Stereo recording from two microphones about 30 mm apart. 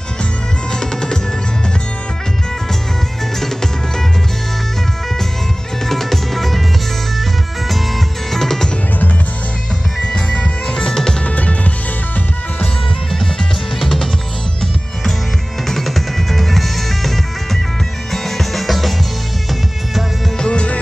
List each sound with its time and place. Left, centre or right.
5.9 s music: centre
8.3 s music: centre
10.0 s music: left
11.2 s music: left
13.7 s music: centre
15.7 s music: centre
18.1 s music: centre
20.3 s music: left